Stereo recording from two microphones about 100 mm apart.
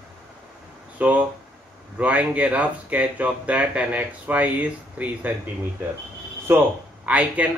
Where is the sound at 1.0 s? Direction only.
15° right (ahead or behind).